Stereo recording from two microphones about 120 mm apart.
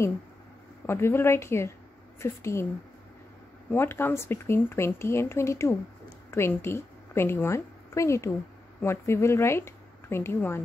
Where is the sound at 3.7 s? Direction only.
20° left (ahead or behind).